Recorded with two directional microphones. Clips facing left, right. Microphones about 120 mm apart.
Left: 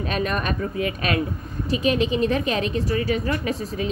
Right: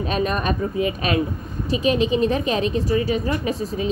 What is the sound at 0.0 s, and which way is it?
A woman's voice, 30° right (ahead or behind).